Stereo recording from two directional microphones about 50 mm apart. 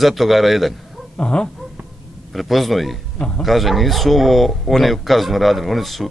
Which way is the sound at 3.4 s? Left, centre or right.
Centre.